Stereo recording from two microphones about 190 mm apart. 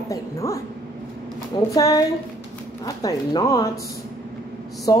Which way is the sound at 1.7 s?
20° left (ahead or behind).